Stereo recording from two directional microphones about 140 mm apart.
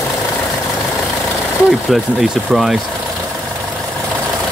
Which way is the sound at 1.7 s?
Centre (ahead or behind).